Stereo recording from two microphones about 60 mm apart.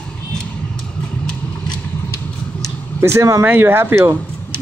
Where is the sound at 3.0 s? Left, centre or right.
Right.